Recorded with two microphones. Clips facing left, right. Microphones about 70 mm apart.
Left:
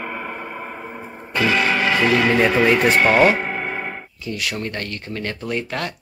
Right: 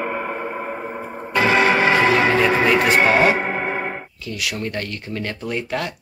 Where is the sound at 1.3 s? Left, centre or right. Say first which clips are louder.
Right 3 dB; right.